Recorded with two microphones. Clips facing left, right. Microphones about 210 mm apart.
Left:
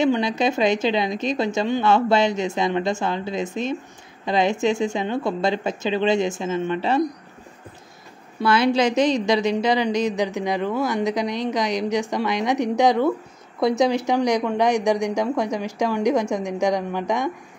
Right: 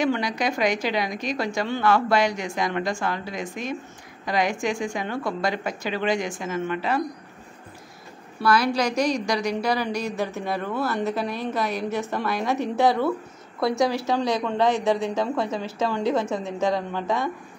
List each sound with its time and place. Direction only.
0.0 s a woman's voice: 25° left (ahead or behind)
8.4 s a woman's voice: 25° left (ahead or behind)